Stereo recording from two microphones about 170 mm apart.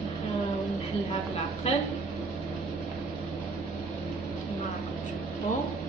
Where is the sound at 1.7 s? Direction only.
40° left (ahead or behind).